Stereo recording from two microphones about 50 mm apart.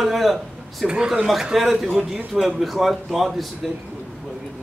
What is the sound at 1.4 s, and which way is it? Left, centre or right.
Speech, centre.